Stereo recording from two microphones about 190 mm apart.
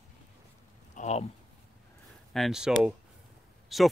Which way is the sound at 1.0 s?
35° left (ahead or behind).